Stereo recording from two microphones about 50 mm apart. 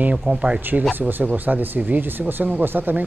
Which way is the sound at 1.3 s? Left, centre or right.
Right.